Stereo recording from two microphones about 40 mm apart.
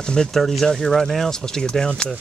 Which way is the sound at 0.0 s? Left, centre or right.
Centre.